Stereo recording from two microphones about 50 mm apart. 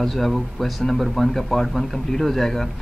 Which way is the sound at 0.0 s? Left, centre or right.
Centre.